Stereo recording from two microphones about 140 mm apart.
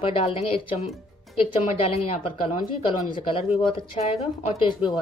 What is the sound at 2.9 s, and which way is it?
Speech, 35° left (ahead or behind).